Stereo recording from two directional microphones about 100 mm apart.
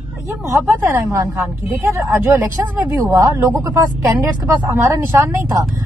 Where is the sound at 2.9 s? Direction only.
35° right (ahead or behind).